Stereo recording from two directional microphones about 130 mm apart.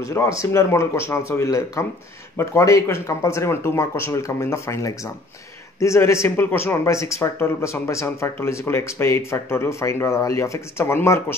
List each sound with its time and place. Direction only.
0.0 s speech: 25° left (ahead or behind)